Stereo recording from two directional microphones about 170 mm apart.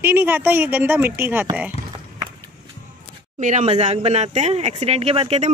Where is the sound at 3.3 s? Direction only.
45° right (ahead or behind).